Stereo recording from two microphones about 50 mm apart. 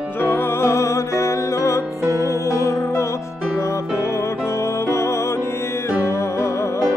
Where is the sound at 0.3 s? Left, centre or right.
Left.